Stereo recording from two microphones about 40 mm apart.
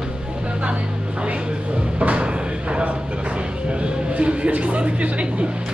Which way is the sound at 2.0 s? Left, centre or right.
Right.